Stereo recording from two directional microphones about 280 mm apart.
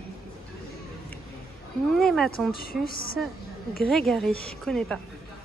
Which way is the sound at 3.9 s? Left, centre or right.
Centre.